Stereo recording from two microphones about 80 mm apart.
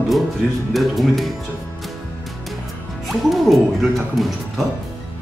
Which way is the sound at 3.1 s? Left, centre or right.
Centre.